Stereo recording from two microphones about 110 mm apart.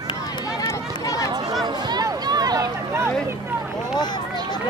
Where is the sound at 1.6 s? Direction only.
40° right (ahead or behind).